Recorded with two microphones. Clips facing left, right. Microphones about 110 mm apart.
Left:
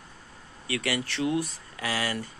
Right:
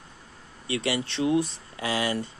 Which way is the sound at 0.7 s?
25° right (ahead or behind).